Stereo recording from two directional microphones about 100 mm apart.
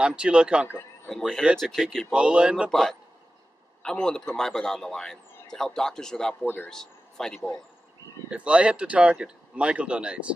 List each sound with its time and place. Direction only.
0.0 s speech: 10° right (ahead or behind)
1.0 s a man's voice: 5° left (ahead or behind)
2.1 s speech: 10° right (ahead or behind)
2.7 s a man's voice: 5° left (ahead or behind)
6.4 s speech: 20° left (ahead or behind)
6.7 s speech: 5° left (ahead or behind)
8.3 s speech: 10° right (ahead or behind)